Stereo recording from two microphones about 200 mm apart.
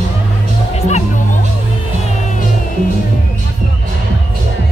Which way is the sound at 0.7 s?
35° left (ahead or behind).